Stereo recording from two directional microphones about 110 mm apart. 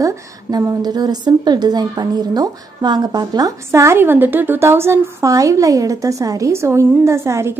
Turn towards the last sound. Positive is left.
turn(degrees=-25)  # may be behind; listen again after turning